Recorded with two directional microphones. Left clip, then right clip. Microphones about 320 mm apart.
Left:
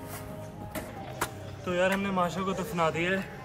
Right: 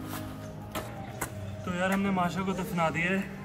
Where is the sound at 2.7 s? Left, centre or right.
Centre.